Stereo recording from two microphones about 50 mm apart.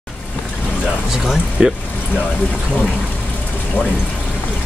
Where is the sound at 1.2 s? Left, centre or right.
Centre.